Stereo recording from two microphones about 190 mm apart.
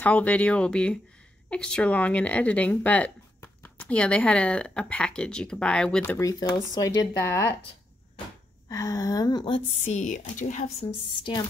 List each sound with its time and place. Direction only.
0.0 s speech: 5° left (ahead or behind)
8.6 s a woman's voice: 20° left (ahead or behind)
9.8 s a woman's voice: 40° left (ahead or behind)